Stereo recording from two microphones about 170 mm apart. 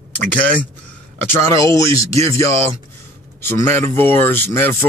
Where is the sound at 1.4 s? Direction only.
20° left (ahead or behind).